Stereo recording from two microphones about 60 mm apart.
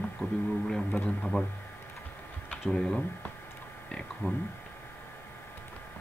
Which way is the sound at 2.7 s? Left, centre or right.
Centre.